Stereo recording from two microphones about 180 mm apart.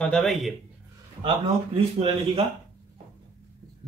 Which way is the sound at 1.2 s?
30° right (ahead or behind).